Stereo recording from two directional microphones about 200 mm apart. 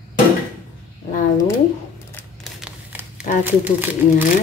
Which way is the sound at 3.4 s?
10° right (ahead or behind).